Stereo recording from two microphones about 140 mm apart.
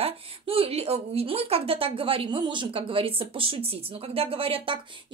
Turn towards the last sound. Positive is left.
turn(degrees=-40)  # may be behind; listen again after turning